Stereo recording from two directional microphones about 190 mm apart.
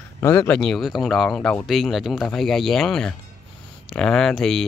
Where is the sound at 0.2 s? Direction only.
15° left (ahead or behind).